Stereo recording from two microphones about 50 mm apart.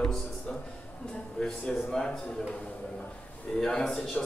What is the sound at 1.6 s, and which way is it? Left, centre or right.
Speech, centre.